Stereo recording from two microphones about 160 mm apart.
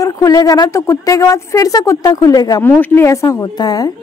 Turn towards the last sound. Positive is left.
turn(degrees=25)  # may be behind; listen again after turning